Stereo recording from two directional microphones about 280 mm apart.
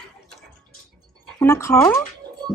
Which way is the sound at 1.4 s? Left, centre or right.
Centre.